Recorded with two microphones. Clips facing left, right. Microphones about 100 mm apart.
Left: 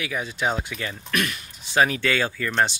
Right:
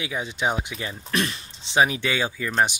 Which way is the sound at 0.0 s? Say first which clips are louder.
Even; 20° right (ahead or behind).